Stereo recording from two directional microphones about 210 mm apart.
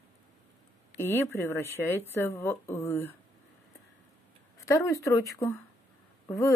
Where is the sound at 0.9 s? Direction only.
10° left (ahead or behind).